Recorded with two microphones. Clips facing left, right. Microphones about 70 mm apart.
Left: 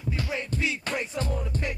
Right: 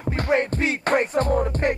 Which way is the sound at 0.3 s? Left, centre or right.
Right.